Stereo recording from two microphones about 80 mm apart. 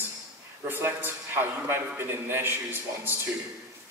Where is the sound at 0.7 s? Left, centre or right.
Right.